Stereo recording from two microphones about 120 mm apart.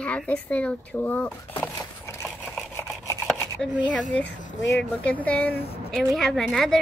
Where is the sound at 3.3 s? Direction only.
5° left (ahead or behind).